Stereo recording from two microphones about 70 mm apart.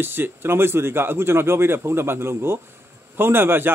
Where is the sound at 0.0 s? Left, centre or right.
Right.